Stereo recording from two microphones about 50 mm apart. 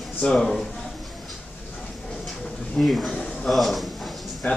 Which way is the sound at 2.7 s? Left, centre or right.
Centre.